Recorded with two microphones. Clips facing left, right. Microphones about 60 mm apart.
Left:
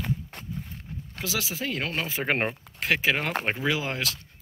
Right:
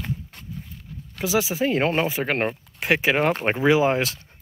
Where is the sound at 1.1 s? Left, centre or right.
Right.